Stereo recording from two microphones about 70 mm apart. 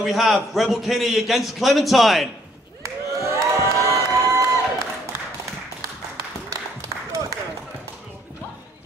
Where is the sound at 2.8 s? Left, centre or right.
Right.